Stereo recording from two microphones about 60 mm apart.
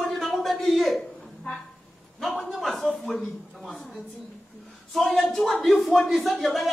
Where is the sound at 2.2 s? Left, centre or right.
Centre.